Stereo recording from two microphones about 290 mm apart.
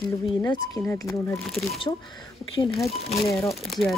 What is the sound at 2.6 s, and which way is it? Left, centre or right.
Speech, centre.